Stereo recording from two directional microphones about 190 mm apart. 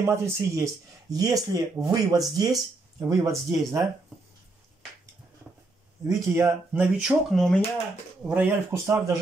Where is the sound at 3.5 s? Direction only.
20° right (ahead or behind).